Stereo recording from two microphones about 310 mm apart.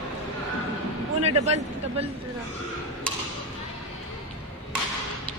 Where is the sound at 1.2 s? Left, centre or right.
Right.